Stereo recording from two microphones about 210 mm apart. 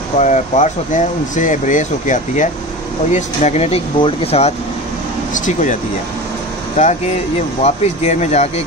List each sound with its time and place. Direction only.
0.2 s speech: 35° left (ahead or behind)
7.6 s speech: 30° left (ahead or behind)